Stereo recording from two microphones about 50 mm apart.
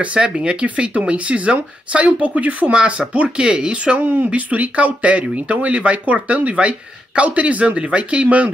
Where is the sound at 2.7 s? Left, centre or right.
Right.